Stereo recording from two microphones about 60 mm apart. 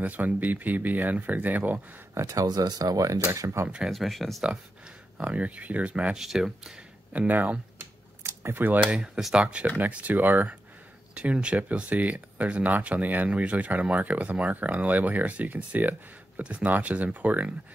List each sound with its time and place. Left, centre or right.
0.0 s speech: right
2.2 s speech: right
3.3 s speech: right
3.6 s speech: centre
3.9 s speech: centre
5.2 s speech: right
6.1 s speech: centre
7.1 s speech: right
8.2 s a sound: right
8.9 s speech: centre